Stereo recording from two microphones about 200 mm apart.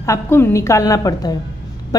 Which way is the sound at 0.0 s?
15° left (ahead or behind).